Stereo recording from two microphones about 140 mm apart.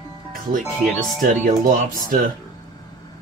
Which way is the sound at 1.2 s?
85° right.